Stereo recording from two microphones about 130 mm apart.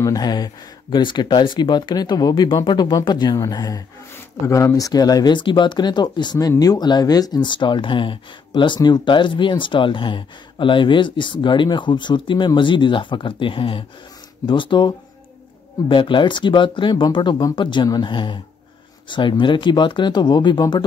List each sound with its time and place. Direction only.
0.0 s speech: 30° left (ahead or behind)